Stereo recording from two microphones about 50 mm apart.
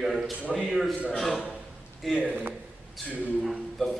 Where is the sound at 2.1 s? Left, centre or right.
Right.